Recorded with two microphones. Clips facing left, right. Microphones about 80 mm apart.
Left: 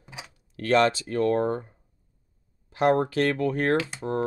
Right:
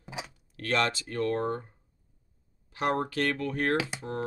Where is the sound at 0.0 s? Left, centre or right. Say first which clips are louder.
Right 4 dB; centre.